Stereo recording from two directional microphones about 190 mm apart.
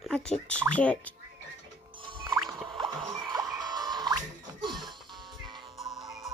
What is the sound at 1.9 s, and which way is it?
Music, 25° right (ahead or behind).